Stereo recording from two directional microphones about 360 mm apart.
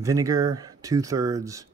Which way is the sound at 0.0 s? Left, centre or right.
Centre.